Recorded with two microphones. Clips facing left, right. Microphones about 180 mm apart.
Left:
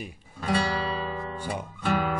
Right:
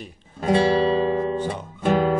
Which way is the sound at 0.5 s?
25° right (ahead or behind).